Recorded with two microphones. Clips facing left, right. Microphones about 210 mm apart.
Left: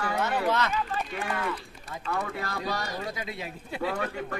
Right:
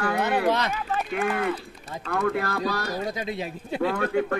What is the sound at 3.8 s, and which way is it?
Speech, 55° right (ahead or behind).